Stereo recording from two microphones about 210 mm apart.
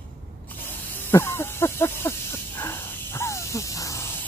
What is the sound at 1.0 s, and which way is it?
Snake, 10° left (ahead or behind).